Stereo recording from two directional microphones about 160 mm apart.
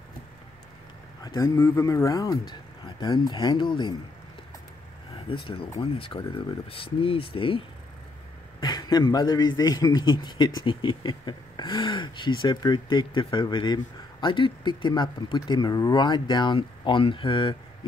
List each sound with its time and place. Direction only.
1.2 s a man's voice: 25° left (ahead or behind)
5.3 s a man's voice: 35° left (ahead or behind)